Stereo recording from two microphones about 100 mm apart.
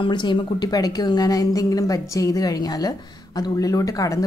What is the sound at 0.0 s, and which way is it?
A woman's voice, 50° left (ahead or behind).